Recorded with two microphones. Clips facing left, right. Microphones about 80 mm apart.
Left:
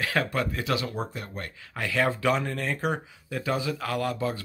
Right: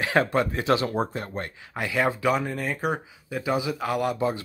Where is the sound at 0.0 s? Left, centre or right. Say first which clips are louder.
Right 5 dB; right.